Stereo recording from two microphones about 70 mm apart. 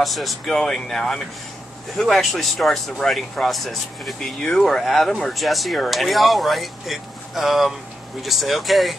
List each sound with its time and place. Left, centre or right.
0.0 s speech: centre